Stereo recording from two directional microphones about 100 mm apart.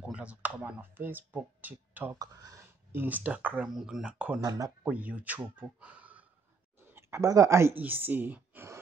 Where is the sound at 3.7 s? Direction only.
5° right (ahead or behind).